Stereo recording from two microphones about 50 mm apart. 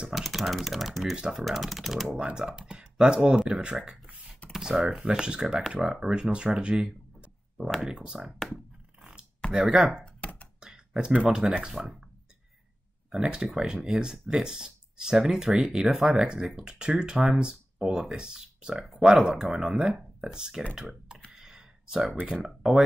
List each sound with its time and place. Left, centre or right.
0.1 s speech: centre
1.1 s speech: centre
1.4 s speech: centre
2.1 s speech: right
9.5 s speech: centre
10.2 s a sound: left
10.6 s computer keyboard: centre
11.2 s speech: centre
13.1 s speech: centre
21.3 s a sound: centre
22.4 s speech: centre